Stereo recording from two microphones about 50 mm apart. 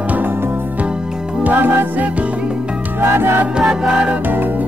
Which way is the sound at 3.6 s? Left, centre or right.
Centre.